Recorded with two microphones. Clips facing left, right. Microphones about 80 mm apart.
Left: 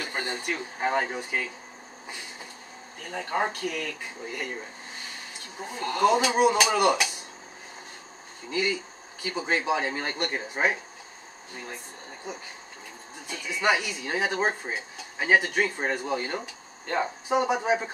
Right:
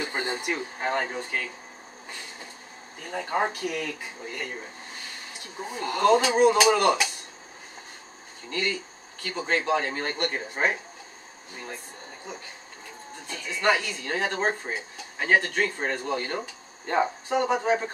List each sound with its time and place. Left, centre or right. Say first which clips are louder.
0.0 s a sound: right 2 dB; right
0.8 s speech: left 2 dB; centre
3.1 s speech: right 1 dB; centre
5.7 s speech: right 2 dB; centre
8.5 s speech: left 2 dB; centre
12.3 s speech: left 3 dB; centre
16.8 s speech: right 3 dB; centre
17.3 s speech: left 3 dB; centre